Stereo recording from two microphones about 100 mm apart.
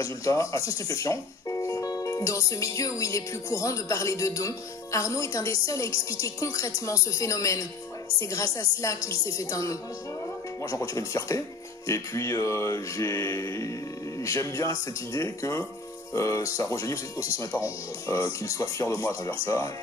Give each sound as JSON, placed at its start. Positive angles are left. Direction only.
{"t": 0.0, "sound": "speech", "side_deg": 30}